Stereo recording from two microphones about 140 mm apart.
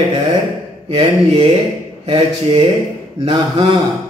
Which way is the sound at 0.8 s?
35° right (ahead or behind).